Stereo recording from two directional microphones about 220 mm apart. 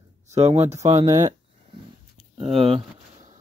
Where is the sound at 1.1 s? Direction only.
15° right (ahead or behind).